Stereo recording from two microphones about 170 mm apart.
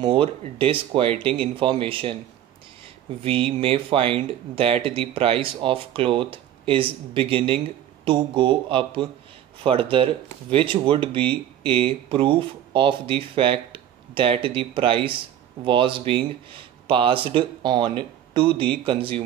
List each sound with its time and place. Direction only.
0.0 s speech: 30° right (ahead or behind)
3.3 s speech: 35° right (ahead or behind)